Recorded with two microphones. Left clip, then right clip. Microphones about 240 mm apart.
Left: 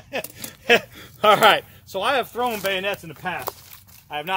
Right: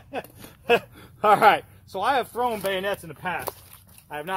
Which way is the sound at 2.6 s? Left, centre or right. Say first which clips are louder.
Left 2 dB; centre.